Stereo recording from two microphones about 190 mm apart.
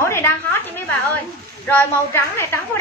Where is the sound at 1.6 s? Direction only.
10° left (ahead or behind).